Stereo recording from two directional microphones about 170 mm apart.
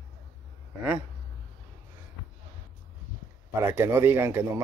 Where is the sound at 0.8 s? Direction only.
10° right (ahead or behind).